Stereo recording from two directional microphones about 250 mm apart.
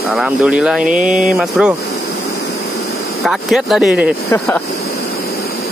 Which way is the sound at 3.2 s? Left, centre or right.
Centre.